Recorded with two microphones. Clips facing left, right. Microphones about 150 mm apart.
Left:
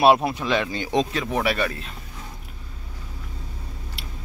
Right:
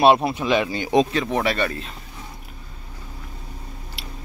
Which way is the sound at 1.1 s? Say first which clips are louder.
Right 2 dB; 5° left (ahead or behind).